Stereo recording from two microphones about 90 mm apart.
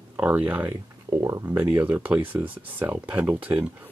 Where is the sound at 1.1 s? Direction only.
35° right (ahead or behind).